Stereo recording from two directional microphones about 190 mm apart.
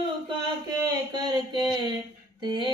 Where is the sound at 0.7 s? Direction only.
20° right (ahead or behind).